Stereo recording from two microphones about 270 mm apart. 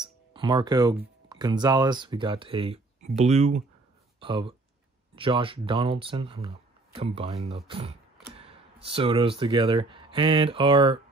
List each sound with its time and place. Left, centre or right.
0.0 s speech: centre